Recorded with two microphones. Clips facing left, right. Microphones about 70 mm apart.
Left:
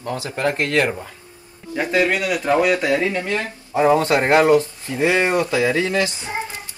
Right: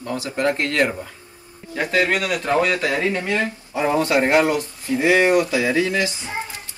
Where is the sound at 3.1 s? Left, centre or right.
Right.